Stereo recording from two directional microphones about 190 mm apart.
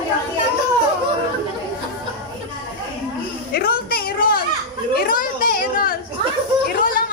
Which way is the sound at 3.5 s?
50° left (ahead or behind).